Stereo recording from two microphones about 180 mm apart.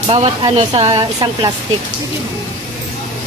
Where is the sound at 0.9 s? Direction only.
25° right (ahead or behind).